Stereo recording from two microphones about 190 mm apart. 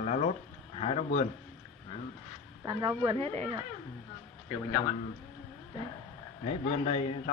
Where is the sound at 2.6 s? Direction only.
20° right (ahead or behind).